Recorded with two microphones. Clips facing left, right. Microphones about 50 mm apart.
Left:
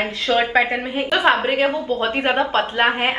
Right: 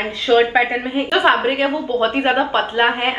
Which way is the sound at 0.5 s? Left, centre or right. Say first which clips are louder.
Right 2 dB; centre.